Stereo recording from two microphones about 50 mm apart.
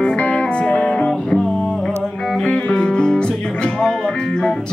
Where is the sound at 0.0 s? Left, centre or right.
Left.